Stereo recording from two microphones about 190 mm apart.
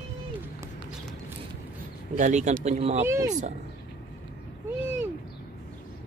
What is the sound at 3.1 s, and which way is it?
Speech, 15° right (ahead or behind).